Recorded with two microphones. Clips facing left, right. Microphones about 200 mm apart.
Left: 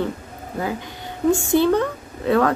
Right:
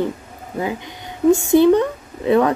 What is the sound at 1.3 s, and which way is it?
A woman's voice, 20° right (ahead or behind).